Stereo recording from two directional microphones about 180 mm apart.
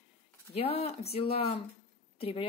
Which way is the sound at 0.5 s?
35° left (ahead or behind).